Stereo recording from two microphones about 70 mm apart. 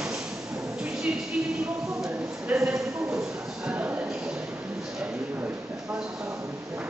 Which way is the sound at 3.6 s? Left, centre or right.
Right.